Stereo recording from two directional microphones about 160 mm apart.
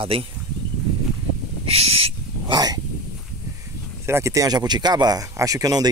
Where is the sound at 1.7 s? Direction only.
40° right (ahead or behind).